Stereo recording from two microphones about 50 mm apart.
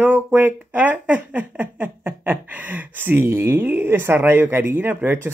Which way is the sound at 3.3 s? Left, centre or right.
Right.